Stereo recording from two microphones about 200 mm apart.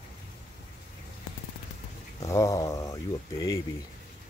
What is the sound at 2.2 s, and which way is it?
Speech, 15° left (ahead or behind).